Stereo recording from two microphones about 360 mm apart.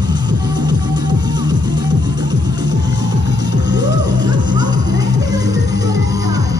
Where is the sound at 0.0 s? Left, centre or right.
Centre.